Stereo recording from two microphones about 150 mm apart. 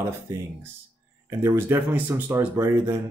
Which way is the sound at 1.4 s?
20° right (ahead or behind).